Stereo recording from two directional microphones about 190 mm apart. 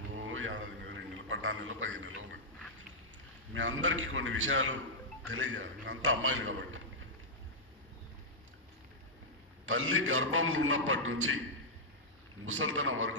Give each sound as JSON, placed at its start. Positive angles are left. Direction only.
{"t": 0.1, "sound": "a sound", "side_deg": -90}
{"t": 3.5, "sound": "a man's voice", "side_deg": -85}
{"t": 9.7, "sound": "a man's voice", "side_deg": -90}
{"t": 12.4, "sound": "a man's voice", "side_deg": -90}